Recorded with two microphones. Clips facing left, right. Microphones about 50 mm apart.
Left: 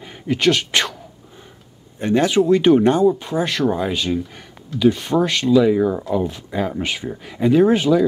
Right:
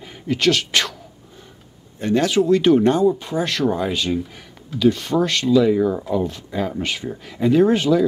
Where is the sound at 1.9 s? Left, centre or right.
Left.